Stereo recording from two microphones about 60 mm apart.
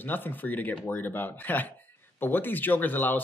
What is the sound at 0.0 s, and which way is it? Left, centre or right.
A man's voice, left.